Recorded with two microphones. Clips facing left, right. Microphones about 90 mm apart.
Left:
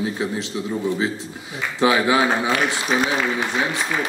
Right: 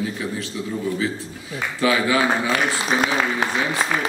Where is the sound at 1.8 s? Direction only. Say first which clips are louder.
Left 2 dB; 20° left (ahead or behind).